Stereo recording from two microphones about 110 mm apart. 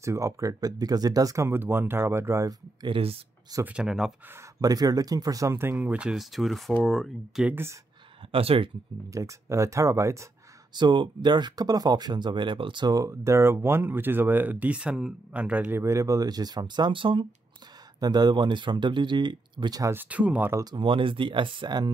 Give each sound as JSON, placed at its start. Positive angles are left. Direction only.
{"t": 0.0, "sound": "speech", "side_deg": -30}
{"t": 2.8, "sound": "speech", "side_deg": -55}
{"t": 3.6, "sound": "speech", "side_deg": -5}
{"t": 4.6, "sound": "speech", "side_deg": -35}
{"t": 7.4, "sound": "speech", "side_deg": -20}
{"t": 8.3, "sound": "speech", "side_deg": -60}
{"t": 9.1, "sound": "speech", "side_deg": -30}
{"t": 10.7, "sound": "speech", "side_deg": -45}
{"t": 15.8, "sound": "speech", "side_deg": -25}
{"t": 18.0, "sound": "speech", "side_deg": -40}
{"t": 19.8, "sound": "speech", "side_deg": -20}
{"t": 20.7, "sound": "speech", "side_deg": -50}